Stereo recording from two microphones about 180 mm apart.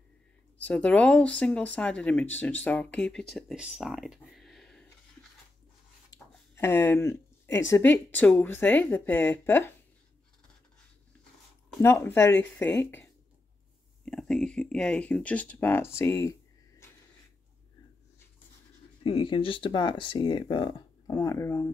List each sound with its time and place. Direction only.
0.7 s speech: 10° left (ahead or behind)
6.1 s speech: 15° left (ahead or behind)
11.8 s speech: 15° left (ahead or behind)
19.0 s speech: 30° left (ahead or behind)